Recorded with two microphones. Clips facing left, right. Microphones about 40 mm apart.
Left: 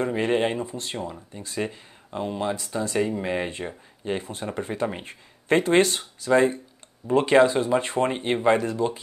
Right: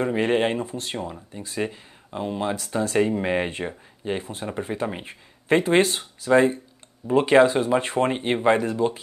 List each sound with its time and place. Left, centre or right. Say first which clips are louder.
0.0 s speech: right 2 dB; centre
0.7 s speech: right 2 dB; right
1.0 s speech: right 1 dB; centre
2.7 s speech: right 5 dB; centre
7.4 s speech: right 1 dB; right
8.1 s speech: even; centre